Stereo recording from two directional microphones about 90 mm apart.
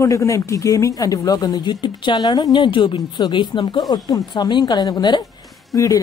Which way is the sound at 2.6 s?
65° left (ahead or behind).